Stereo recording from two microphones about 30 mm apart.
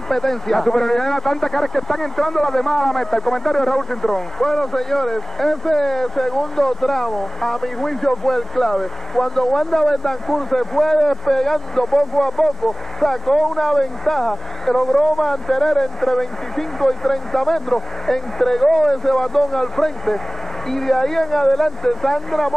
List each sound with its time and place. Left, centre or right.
0.1 s speech: centre